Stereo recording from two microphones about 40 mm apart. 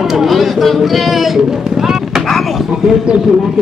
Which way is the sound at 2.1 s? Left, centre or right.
Centre.